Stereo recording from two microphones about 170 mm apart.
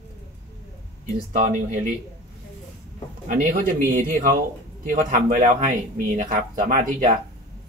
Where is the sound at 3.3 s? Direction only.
55° right (ahead or behind).